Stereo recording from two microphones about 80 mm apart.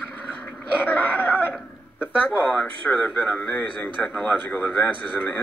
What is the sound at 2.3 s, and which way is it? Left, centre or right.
Speech, centre.